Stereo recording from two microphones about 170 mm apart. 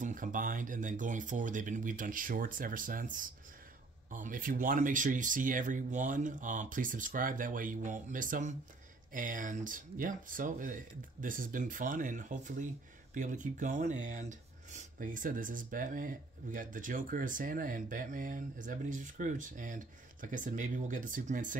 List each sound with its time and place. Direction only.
0.0 s speech: 50° right (ahead or behind)